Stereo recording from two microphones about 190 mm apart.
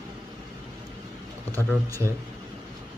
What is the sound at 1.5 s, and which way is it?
Speech, 15° right (ahead or behind).